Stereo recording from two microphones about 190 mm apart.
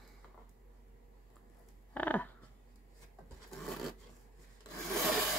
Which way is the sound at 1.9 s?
10° left (ahead or behind).